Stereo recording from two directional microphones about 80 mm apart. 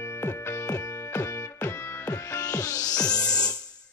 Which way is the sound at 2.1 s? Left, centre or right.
Left.